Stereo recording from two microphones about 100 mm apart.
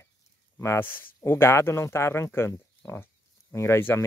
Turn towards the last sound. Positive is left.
turn(degrees=25)  # may be behind; listen again after turning